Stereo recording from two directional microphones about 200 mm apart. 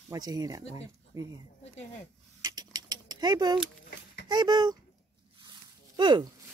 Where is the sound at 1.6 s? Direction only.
35° left (ahead or behind).